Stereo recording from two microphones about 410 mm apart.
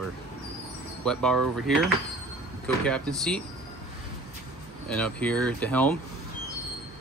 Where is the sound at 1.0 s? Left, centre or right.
Centre.